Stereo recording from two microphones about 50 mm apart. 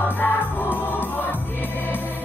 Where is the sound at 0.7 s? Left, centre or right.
Left.